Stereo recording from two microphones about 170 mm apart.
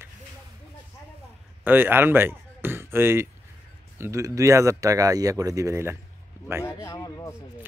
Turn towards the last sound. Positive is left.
turn(degrees=20)  # may be behind; listen again after turning